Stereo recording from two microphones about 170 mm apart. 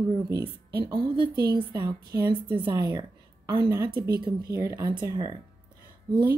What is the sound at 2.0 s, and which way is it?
Speech, 65° right (ahead or behind).